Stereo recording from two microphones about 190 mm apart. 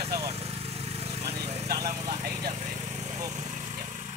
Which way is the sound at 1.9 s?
45° right (ahead or behind).